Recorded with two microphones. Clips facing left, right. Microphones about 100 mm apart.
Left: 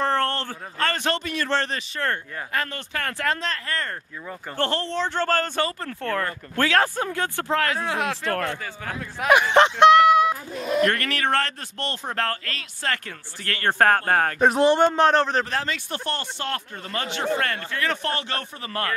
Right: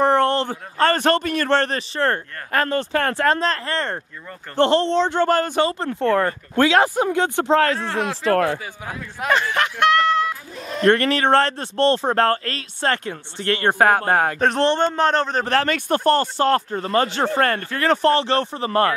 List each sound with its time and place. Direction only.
0.0 s a sound: 15° right (ahead or behind)
0.7 s speech: 40° right (ahead or behind)
1.8 s speech: 35° right (ahead or behind)
7.7 s speech: 5° left (ahead or behind)
9.3 s speech: 20° left (ahead or behind)
10.5 s speech: 5° left (ahead or behind)
10.8 s speech: 30° right (ahead or behind)
13.7 s speech: 10° right (ahead or behind)
14.4 s speech: 5° left (ahead or behind)
15.4 s speech: 60° right (ahead or behind); by 18.9 s 30° right (ahead or behind)